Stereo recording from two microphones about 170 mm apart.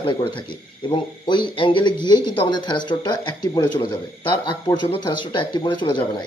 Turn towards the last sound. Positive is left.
turn(degrees=25)  # may be behind; listen again after turning